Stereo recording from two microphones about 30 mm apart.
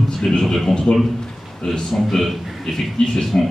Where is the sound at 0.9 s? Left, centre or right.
Left.